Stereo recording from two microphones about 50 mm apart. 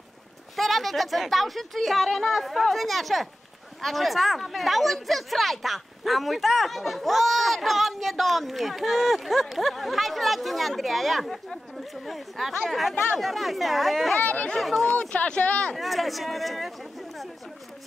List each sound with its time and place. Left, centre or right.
0.6 s speech: centre
14.1 s speech: left
14.6 s speech: centre
14.9 s speech: left
15.7 s speech: centre